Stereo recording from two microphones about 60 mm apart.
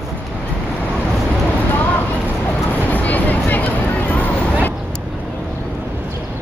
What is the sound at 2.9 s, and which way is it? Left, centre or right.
Vehicle, left.